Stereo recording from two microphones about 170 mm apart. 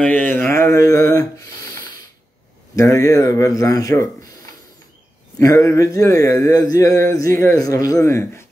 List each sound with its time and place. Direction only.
0.0 s a sound: 10° left (ahead or behind)
2.7 s speech: 20° left (ahead or behind)
5.4 s speech: 20° left (ahead or behind)